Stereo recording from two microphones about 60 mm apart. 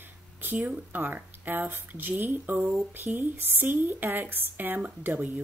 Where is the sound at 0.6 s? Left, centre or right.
Right.